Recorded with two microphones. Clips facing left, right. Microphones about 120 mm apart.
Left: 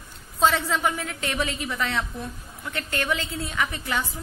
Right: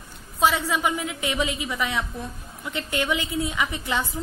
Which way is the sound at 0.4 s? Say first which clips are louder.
Even; 10° right (ahead or behind).